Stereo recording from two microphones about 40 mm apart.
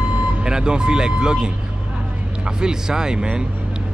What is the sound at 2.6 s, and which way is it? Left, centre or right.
Speech, centre.